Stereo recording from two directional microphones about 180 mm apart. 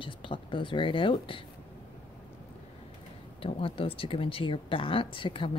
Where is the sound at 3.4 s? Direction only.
30° left (ahead or behind).